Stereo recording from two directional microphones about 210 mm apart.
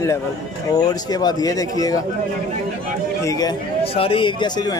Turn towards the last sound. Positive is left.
turn(degrees=20)  # may be behind; listen again after turning